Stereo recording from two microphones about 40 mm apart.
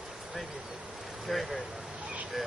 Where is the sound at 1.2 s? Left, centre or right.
Centre.